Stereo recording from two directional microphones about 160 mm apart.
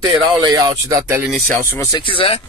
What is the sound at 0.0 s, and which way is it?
Speech, 25° right (ahead or behind).